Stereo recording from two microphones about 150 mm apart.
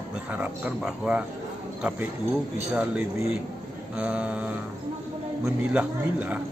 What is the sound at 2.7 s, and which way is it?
A man's voice, 10° right (ahead or behind).